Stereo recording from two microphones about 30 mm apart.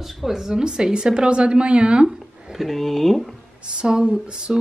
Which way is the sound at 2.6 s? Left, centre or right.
Centre.